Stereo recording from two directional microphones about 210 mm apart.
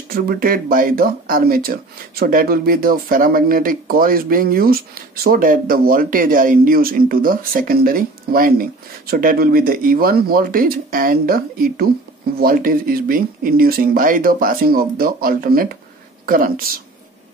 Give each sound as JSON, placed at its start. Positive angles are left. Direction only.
{"t": 0.1, "sound": "speech", "side_deg": -45}